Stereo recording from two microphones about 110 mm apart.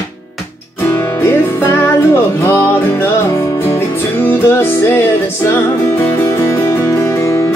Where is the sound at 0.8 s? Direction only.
25° left (ahead or behind).